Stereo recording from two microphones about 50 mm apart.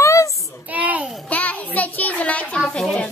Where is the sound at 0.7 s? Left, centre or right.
Right.